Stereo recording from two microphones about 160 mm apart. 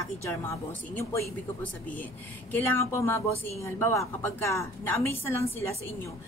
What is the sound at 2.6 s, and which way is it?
Speech, 15° left (ahead or behind).